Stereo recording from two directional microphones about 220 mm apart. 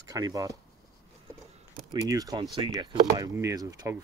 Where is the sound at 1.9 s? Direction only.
15° right (ahead or behind).